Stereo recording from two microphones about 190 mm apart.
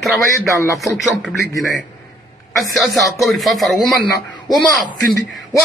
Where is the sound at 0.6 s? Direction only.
15° left (ahead or behind).